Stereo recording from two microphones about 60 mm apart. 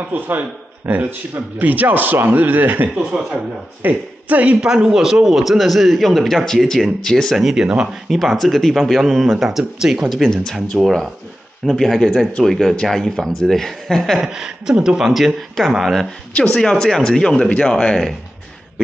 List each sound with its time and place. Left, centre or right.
0.1 s speech: right
3.0 s speech: centre
3.8 s a man's voice: right; by 10.0 s centre
10.0 s speech: centre
14.2 s a man's voice: centre
16.5 s speech: centre